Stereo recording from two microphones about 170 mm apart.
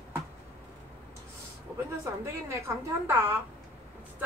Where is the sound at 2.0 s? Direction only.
15° right (ahead or behind).